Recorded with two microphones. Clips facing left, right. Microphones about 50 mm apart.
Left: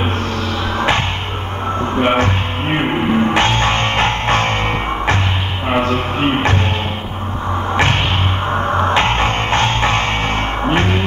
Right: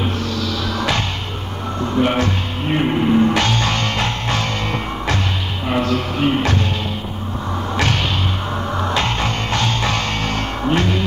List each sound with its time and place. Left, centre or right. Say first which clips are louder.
0.7 s music: left 6 dB; left
5.7 s music: left 3 dB; left
7.7 s a sound: left 4 dB; left
8.5 s music: left 9 dB; left